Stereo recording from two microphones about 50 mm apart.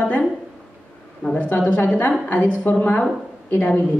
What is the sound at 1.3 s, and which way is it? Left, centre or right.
A woman's voice, left.